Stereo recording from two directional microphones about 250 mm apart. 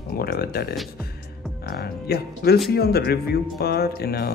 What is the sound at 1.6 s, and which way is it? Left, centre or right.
Speech, left.